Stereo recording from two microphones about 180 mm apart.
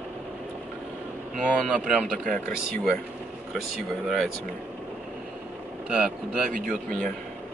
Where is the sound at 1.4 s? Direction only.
5° right (ahead or behind).